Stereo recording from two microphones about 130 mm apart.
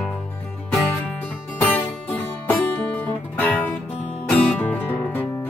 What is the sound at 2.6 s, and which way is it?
Guitar, 10° left (ahead or behind).